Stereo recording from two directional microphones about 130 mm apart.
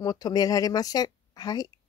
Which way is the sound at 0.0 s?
30° left (ahead or behind).